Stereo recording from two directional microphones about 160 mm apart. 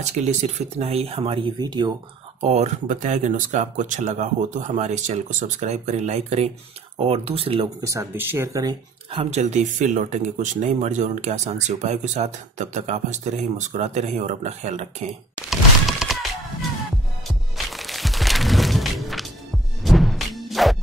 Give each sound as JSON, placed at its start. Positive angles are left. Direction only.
{"t": 0.0, "sound": "speech", "side_deg": -45}
{"t": 1.6, "sound": "speech", "side_deg": -25}
{"t": 2.4, "sound": "speech", "side_deg": -45}
{"t": 7.8, "sound": "speech", "side_deg": -20}
{"t": 9.1, "sound": "speech", "side_deg": -40}
{"t": 15.5, "sound": "a sound", "side_deg": 0}
{"t": 17.6, "sound": "music", "side_deg": 0}